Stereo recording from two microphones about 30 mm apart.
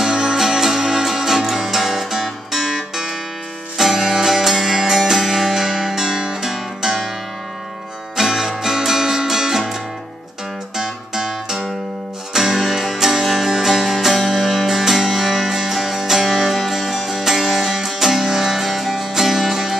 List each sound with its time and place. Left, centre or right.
0.0 s music: centre
8.2 s music: centre
10.8 s music: centre
12.5 s music: centre